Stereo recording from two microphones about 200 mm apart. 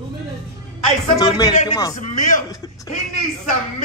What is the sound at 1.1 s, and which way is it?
Speech, 20° left (ahead or behind).